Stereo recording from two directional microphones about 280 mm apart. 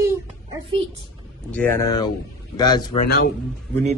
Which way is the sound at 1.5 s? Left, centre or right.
Centre.